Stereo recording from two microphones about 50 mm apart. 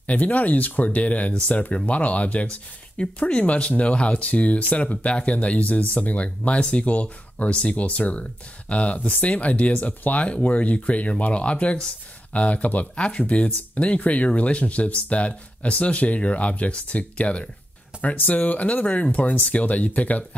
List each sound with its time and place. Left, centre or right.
0.0 s speech: left